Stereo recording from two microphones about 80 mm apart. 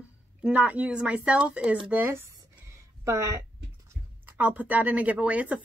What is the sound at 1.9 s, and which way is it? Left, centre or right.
A woman's voice, right.